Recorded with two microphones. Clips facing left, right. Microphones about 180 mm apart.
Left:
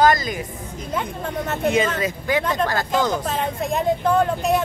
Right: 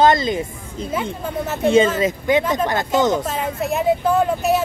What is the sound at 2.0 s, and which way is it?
Speech, 20° right (ahead or behind).